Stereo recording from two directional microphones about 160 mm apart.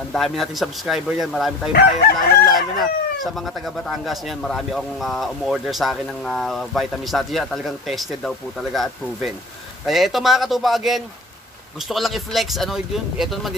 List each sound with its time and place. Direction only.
0.1 s speech: centre (ahead or behind)
1.7 s speech: 75° left (ahead or behind)
2.4 s speech: centre (ahead or behind)